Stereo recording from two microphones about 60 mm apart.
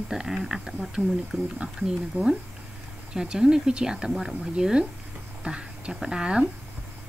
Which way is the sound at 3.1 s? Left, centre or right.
Centre.